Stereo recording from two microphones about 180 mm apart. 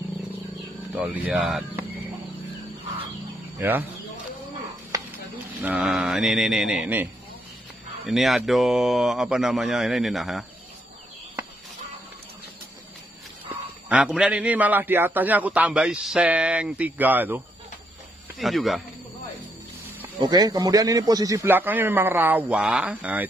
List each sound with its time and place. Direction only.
0.9 s a man's voice: 10° right (ahead or behind)
3.5 s speech: 10° right (ahead or behind)
4.9 s a sound: 20° right (ahead or behind)
5.6 s a man's voice: 10° right (ahead or behind)
8.1 s a man's voice: centre (ahead or behind)
13.8 s a man's voice: 5° right (ahead or behind)
18.4 s a man's voice: centre (ahead or behind)
20.2 s a man's voice: 20° right (ahead or behind); by 23.2 s 5° right (ahead or behind)